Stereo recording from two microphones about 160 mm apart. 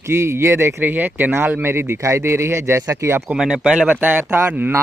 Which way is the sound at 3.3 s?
5° right (ahead or behind).